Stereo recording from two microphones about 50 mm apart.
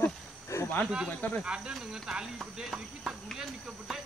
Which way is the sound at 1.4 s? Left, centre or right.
Centre.